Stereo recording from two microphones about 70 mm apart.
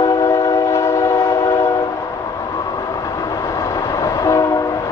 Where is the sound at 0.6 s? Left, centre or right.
Left.